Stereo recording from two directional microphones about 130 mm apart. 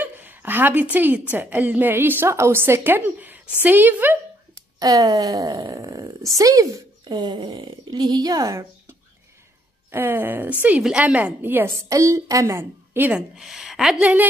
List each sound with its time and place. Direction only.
0.0 s a woman's voice: 15° right (ahead or behind)
4.7 s a woman's voice: 30° right (ahead or behind)
9.8 s a woman's voice: 15° right (ahead or behind)
13.4 s a woman's voice: 5° right (ahead or behind)